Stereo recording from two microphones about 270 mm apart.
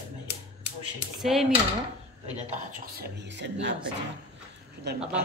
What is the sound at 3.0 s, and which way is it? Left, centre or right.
Speech, right.